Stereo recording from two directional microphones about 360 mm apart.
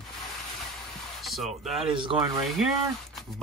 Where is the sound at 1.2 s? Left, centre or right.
Centre.